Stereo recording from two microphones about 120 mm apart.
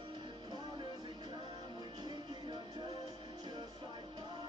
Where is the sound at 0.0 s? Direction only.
40° right (ahead or behind).